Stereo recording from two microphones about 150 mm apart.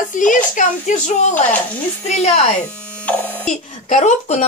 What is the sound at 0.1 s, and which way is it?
Speech, 60° left (ahead or behind).